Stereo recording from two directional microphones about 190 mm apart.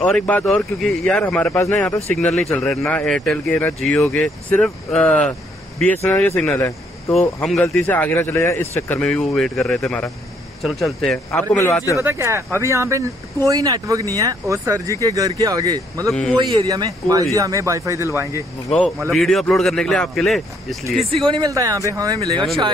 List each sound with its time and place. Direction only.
0.0 s a man's voice: 5° left (ahead or behind)
12.0 s speech: 15° right (ahead or behind)
16.1 s speech: centre (ahead or behind)
16.3 s speech: 20° right (ahead or behind)
18.8 s speech: 5° left (ahead or behind)
21.2 s speech: 20° right (ahead or behind)